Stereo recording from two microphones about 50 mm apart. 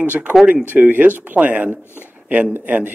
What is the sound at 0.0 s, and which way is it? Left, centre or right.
Speech, right.